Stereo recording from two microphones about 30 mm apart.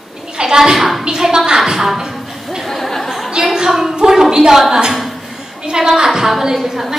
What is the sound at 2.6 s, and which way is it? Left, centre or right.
Speech, centre.